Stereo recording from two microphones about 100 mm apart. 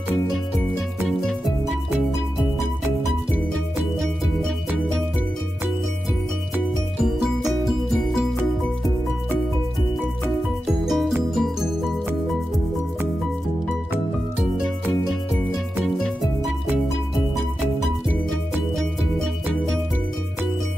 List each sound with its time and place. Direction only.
7.0 s music: 5° right (ahead or behind)
10.9 s music: centre (ahead or behind)